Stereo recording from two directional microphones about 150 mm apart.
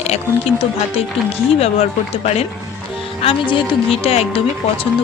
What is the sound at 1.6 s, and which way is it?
Speech, 45° left (ahead or behind).